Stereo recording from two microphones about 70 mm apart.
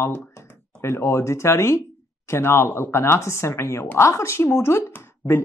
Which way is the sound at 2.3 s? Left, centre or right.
Left.